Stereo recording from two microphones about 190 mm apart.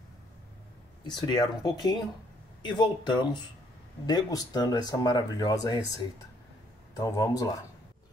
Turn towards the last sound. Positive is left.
turn(degrees=20)  # may be behind; listen again after turning